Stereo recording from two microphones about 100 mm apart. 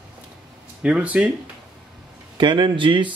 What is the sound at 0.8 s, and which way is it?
Speech, 10° right (ahead or behind).